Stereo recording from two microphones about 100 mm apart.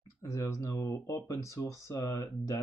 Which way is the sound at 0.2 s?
30° left (ahead or behind).